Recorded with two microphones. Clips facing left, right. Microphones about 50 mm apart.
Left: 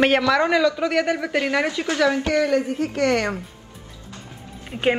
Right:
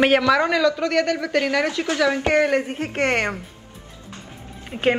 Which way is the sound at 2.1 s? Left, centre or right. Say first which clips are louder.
Right 1 dB; right.